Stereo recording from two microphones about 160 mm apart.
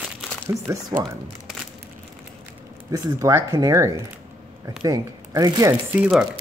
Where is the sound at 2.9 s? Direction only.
20° right (ahead or behind).